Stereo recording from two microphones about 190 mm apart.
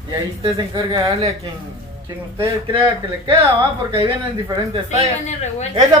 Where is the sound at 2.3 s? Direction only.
10° right (ahead or behind).